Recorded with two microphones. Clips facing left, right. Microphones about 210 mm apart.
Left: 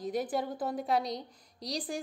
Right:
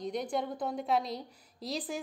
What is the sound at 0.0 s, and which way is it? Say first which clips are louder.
A woman's voice: left 1 dB; 5° left (ahead or behind).